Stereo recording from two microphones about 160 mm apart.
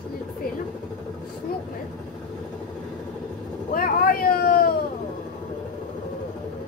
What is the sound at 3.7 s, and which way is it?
Vehicle, 65° left (ahead or behind).